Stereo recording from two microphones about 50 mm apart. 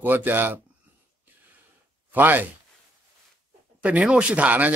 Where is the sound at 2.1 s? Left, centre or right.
Right.